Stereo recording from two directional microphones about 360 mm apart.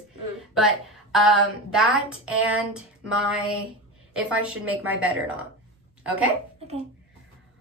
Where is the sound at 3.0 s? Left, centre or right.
Right.